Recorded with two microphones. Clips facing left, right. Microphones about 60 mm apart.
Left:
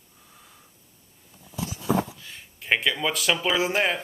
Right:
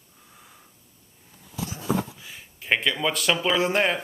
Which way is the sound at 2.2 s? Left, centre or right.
Centre.